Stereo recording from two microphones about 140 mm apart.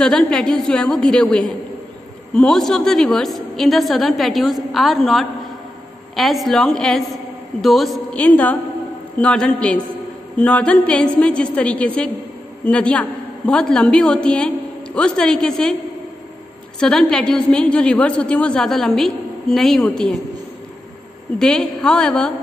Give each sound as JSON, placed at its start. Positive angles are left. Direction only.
{"t": 0.0, "sound": "a woman's voice", "side_deg": 5}
{"t": 16.8, "sound": "a woman's voice", "side_deg": 5}
{"t": 21.4, "sound": "a woman's voice", "side_deg": 5}